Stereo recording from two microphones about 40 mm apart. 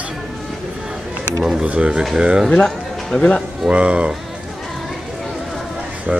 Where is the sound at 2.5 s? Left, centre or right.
Centre.